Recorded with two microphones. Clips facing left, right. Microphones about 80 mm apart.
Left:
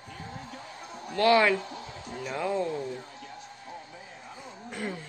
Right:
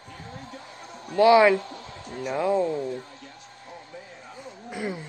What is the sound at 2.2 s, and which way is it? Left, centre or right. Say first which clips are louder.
Speech: right 6 dB; centre.